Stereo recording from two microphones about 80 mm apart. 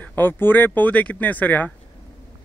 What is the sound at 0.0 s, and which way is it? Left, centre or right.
Speech, left.